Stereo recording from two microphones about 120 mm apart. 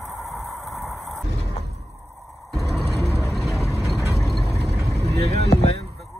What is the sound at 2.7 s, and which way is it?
Vehicle, 60° right (ahead or behind).